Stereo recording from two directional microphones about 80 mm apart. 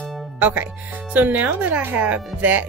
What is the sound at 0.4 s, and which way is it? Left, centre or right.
Speech, centre.